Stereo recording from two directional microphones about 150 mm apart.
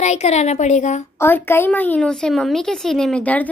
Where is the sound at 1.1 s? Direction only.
15° left (ahead or behind).